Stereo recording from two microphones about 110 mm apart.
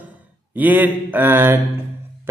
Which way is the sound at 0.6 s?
15° right (ahead or behind).